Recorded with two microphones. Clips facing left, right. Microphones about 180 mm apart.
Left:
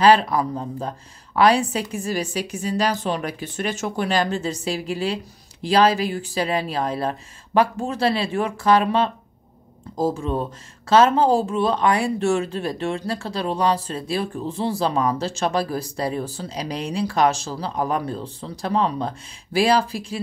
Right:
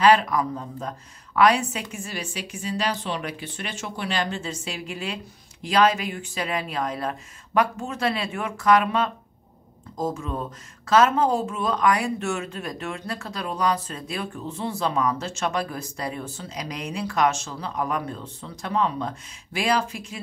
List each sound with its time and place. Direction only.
0.0 s speech: 30° left (ahead or behind)